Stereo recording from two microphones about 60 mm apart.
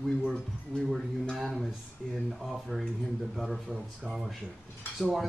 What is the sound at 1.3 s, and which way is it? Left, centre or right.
Speech, centre.